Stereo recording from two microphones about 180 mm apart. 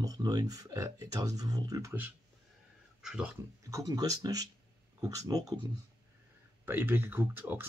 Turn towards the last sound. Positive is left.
turn(degrees=-10)  # may be behind; listen again after turning